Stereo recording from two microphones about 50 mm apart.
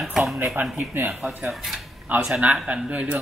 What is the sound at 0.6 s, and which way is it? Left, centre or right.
Speech, right.